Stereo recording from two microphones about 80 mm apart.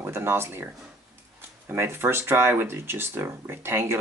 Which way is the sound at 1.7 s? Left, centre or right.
Right.